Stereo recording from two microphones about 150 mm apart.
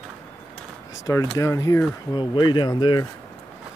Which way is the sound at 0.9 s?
20° left (ahead or behind).